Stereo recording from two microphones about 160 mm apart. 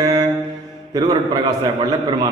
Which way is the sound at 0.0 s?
25° right (ahead or behind).